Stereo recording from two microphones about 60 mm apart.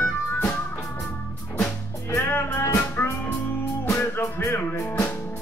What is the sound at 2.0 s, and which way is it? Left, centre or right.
Music, left.